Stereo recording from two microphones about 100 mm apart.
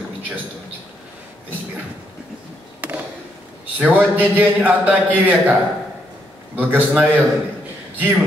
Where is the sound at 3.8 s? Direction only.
15° right (ahead or behind).